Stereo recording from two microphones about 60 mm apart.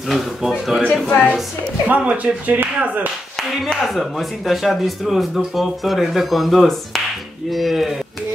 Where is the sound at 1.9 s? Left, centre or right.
Right.